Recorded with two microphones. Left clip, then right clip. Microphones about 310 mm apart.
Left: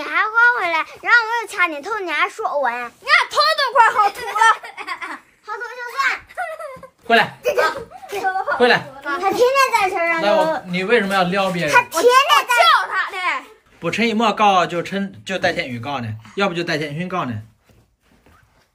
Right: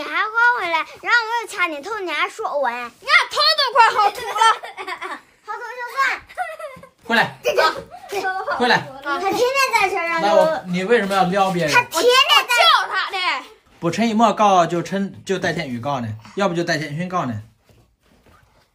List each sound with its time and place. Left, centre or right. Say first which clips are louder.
0.0 s a child's voice: left 2 dB; centre
3.1 s a sound: even; left
3.4 s a child's voice: even; centre
4.6 s a sound: left 1 dB; right
8.1 s a child's voice: left 2 dB; centre
12.4 s a child's voice: left 1 dB; centre